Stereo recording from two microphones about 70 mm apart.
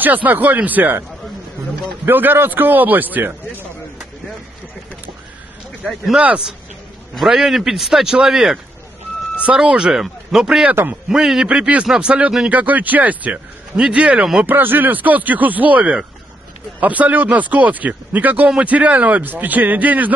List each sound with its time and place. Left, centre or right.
0.0 s speech: right
2.0 s speech: right
6.1 s a man's voice: centre
10.7 s speech: right
11.1 s a man's voice: centre
12.4 s speech: right
14.4 s speech: right